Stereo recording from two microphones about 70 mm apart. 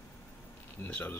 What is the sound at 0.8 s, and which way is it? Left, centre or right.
Speech, left.